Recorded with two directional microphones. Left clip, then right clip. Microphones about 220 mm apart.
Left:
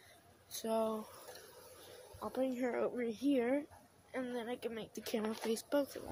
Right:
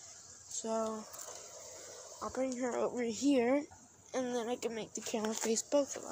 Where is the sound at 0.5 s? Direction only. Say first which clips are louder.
Even; 15° left (ahead or behind).